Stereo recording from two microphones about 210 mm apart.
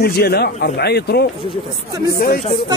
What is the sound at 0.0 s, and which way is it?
Speech, 50° left (ahead or behind).